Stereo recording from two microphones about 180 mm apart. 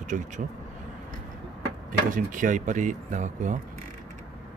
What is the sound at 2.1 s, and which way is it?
Speech, 45° right (ahead or behind).